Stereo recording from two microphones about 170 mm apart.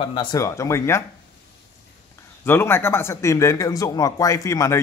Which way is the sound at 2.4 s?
15° left (ahead or behind).